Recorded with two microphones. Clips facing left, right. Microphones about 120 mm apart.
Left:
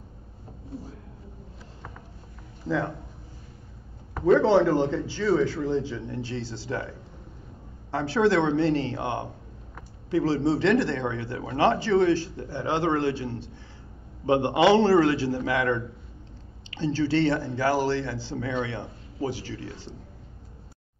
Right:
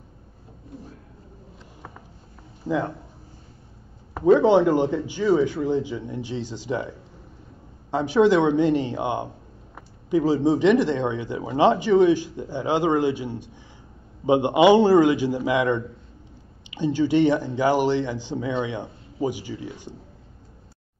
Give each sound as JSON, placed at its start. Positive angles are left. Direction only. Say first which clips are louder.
{"t": 2.6, "sound": "speech", "louder": "right 2 dB", "side_deg": -15}
{"t": 4.2, "sound": "speech", "louder": "right 3 dB", "side_deg": -15}